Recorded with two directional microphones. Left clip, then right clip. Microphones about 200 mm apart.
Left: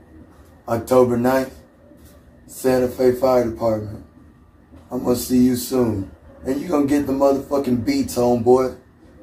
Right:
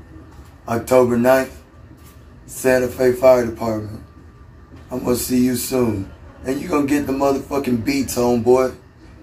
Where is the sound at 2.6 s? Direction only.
15° right (ahead or behind).